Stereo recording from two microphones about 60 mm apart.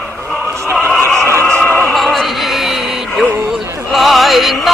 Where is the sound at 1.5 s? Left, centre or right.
Left.